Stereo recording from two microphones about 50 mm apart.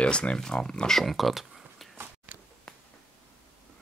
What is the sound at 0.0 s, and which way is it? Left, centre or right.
Speech, left.